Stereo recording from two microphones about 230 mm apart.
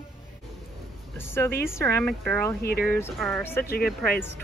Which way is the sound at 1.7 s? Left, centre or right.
Centre.